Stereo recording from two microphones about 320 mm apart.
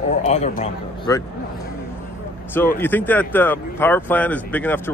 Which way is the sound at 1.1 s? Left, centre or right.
Centre.